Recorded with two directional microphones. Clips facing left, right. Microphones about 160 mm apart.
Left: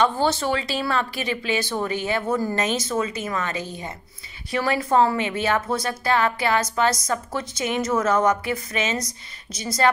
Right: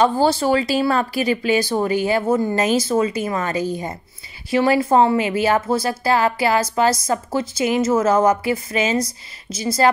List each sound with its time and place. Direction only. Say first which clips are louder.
0.0 s a woman's voice: right 5 dB; 35° right (ahead or behind)